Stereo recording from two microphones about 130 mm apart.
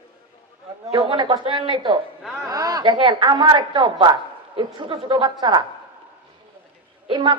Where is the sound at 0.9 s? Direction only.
35° right (ahead or behind).